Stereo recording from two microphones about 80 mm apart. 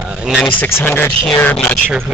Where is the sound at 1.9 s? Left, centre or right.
Centre.